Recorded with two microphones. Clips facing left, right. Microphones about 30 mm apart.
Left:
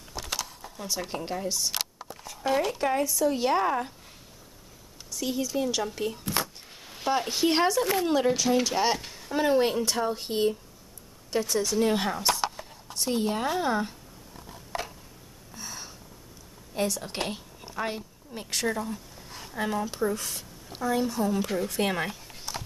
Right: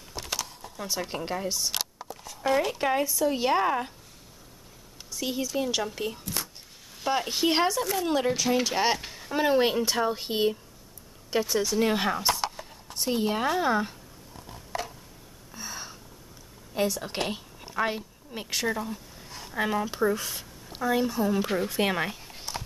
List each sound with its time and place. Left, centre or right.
0.7 s speech: centre
5.1 s speech: centre
6.4 s a sound: left
7.1 s speech: centre
11.8 s a sound: centre
13.2 s speech: centre
15.5 s gasp: centre
16.7 s a woman's voice: centre
19.3 s a woman's voice: centre